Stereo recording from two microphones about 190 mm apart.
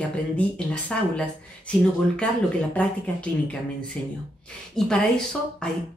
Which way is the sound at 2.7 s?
5° left (ahead or behind).